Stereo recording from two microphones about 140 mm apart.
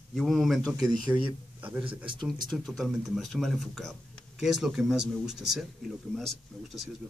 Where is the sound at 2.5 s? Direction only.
Centre (ahead or behind).